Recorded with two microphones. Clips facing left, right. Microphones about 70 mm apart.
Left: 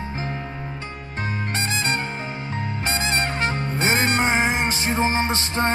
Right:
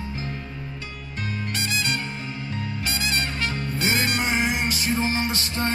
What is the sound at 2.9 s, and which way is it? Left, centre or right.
Music, left.